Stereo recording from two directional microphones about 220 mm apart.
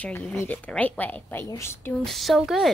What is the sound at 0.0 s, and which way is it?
A woman's voice, 5° left (ahead or behind).